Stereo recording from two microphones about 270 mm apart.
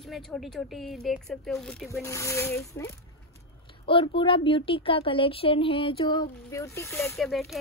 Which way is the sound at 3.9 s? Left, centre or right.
Centre.